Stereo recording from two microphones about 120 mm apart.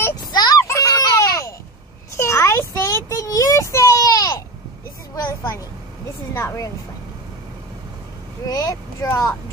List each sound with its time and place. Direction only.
0.1 s a sound: 35° left (ahead or behind)
2.1 s child singing: 25° left (ahead or behind)
6.3 s speech: 25° left (ahead or behind)
8.5 s speech: 30° left (ahead or behind)